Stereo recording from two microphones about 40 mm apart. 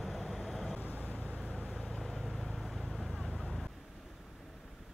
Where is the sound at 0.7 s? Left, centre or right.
Left.